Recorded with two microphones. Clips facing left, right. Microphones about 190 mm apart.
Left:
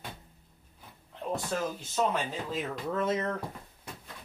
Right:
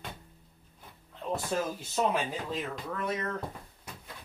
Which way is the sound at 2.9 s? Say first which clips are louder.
Left 4 dB; 25° left (ahead or behind).